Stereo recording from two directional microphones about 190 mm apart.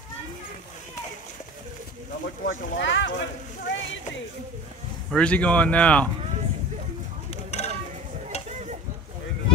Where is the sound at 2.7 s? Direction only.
75° left (ahead or behind).